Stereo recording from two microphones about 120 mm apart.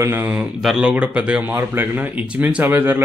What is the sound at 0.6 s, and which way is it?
Speech, 5° right (ahead or behind).